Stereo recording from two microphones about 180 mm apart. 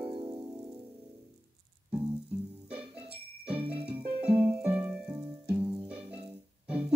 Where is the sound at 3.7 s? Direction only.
10° right (ahead or behind).